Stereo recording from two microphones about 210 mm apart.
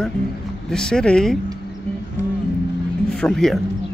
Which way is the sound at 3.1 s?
5° left (ahead or behind).